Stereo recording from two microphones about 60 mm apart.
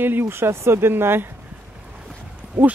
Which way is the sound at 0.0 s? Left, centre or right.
Right.